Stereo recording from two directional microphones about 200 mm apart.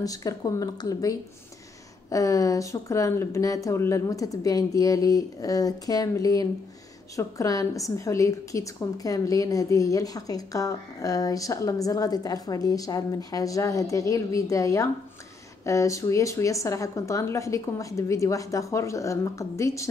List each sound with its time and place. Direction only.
0.0 s a woman's voice: 15° left (ahead or behind)